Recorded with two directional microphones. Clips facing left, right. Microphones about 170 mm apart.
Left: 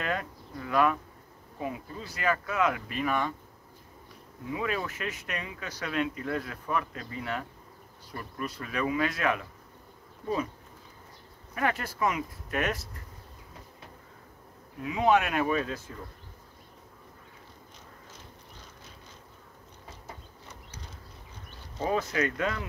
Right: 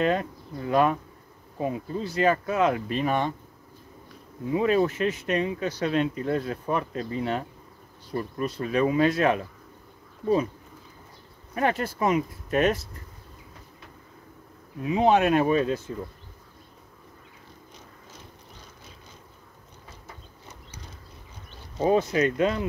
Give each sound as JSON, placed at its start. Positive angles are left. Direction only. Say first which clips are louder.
{"t": 0.0, "sound": "speech", "louder": "right 8 dB", "side_deg": -25}
{"t": 4.5, "sound": "speech", "louder": "right 10 dB", "side_deg": -30}
{"t": 11.5, "sound": "speech", "louder": "right 5 dB", "side_deg": -25}
{"t": 14.8, "sound": "speech", "louder": "right 4 dB", "side_deg": -30}
{"t": 21.7, "sound": "speech", "louder": "right 7 dB", "side_deg": -20}